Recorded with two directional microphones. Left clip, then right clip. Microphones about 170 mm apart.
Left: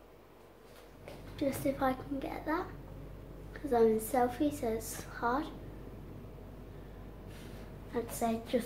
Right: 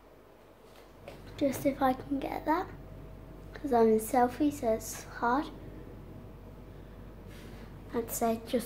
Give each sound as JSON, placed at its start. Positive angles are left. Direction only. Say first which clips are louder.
{"t": 1.3, "sound": "a child's voice", "louder": "right 4 dB", "side_deg": -35}
{"t": 3.6, "sound": "a child's voice", "louder": "right 3 dB", "side_deg": -35}
{"t": 4.5, "sound": "a woman's voice", "louder": "right 5 dB", "side_deg": -20}
{"t": 5.2, "sound": "a child's voice", "louder": "right 4 dB", "side_deg": -40}
{"t": 7.9, "sound": "a woman's voice", "louder": "right 3 dB", "side_deg": -30}